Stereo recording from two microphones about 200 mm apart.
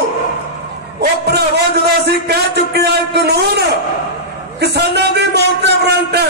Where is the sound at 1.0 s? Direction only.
55° right (ahead or behind).